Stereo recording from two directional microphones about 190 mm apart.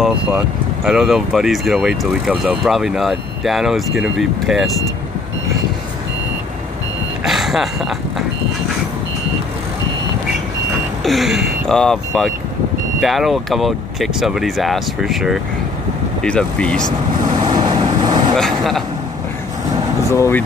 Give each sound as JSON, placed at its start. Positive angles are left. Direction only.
{"t": 0.0, "sound": "speech", "side_deg": -10}
{"t": 7.2, "sound": "speech", "side_deg": 0}
{"t": 11.1, "sound": "speech", "side_deg": 0}
{"t": 17.3, "sound": "vehicle", "side_deg": -25}
{"t": 18.3, "sound": "speech", "side_deg": 0}
{"t": 20.1, "sound": "speech", "side_deg": 15}